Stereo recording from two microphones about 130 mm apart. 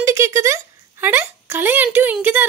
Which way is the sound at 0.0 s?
20° right (ahead or behind).